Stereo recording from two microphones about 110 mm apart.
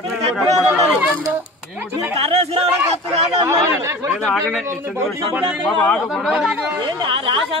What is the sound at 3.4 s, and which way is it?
Speech, 25° right (ahead or behind).